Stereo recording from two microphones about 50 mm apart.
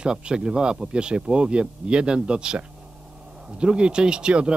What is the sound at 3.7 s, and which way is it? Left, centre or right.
Speech, centre.